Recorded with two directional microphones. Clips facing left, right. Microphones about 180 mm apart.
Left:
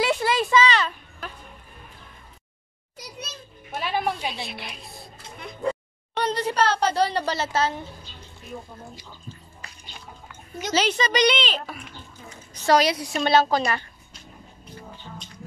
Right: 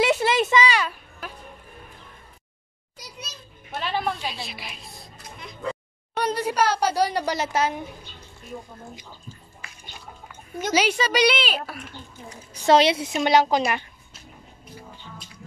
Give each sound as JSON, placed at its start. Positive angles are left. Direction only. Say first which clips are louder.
{"t": 0.0, "sound": "a sound", "louder": "right 2 dB", "side_deg": -20}
{"t": 0.7, "sound": "a sound", "louder": "left 1 dB", "side_deg": -10}
{"t": 3.7, "sound": "music", "louder": "left 1 dB", "side_deg": 10}
{"t": 4.3, "sound": "a woman's voice", "louder": "left 2 dB", "side_deg": 0}
{"t": 6.1, "sound": "speech", "louder": "even", "side_deg": -10}
{"t": 10.7, "sound": "speech", "louder": "right 1 dB", "side_deg": -10}
{"t": 12.5, "sound": "a woman's voice", "louder": "right 2 dB", "side_deg": -25}
{"t": 13.2, "sound": "speech", "louder": "right 1 dB", "side_deg": -15}
{"t": 14.8, "sound": "music", "louder": "left 3 dB", "side_deg": -5}